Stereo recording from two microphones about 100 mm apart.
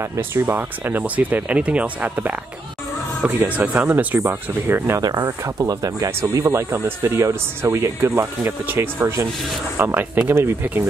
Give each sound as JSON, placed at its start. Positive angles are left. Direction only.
{"t": 0.0, "sound": "speech", "side_deg": -25}
{"t": 5.0, "sound": "speech", "side_deg": -40}